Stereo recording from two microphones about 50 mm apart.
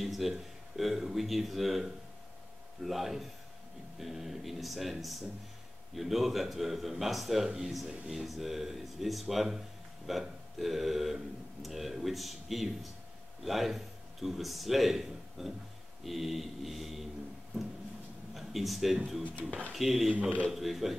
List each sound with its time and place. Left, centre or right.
0.0 s a man's voice: centre
18.3 s speech: centre
20.1 s speech: right
20.5 s speech: centre